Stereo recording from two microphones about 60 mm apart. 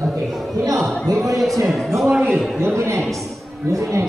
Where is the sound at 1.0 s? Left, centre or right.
Right.